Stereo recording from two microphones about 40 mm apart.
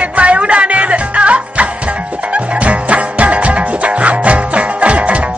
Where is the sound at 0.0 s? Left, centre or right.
Right.